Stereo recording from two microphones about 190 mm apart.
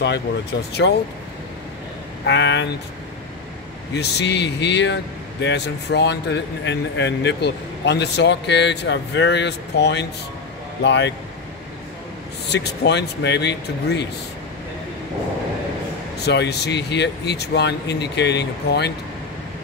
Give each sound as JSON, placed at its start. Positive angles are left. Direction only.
{"t": 0.0, "sound": "speech", "side_deg": 65}
{"t": 2.2, "sound": "speech", "side_deg": 70}
{"t": 3.9, "sound": "speech", "side_deg": 60}
{"t": 12.4, "sound": "speech", "side_deg": 60}
{"t": 16.3, "sound": "speech", "side_deg": 60}